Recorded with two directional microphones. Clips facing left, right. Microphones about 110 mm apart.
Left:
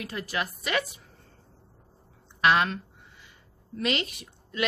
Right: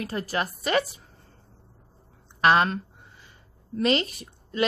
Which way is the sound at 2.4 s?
40° right (ahead or behind).